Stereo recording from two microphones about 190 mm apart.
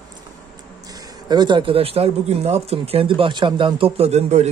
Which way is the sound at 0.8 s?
20° right (ahead or behind).